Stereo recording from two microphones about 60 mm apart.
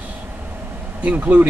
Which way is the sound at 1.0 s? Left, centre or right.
Right.